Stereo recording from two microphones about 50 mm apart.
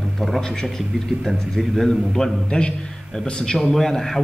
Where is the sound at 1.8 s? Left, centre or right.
Centre.